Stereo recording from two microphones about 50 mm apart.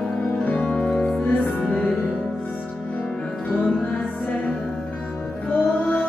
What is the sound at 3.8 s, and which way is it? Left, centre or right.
Music, left.